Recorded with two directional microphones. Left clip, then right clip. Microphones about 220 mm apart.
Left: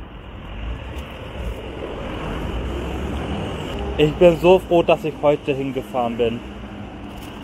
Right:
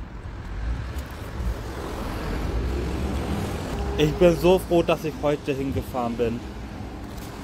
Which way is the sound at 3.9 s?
Centre (ahead or behind).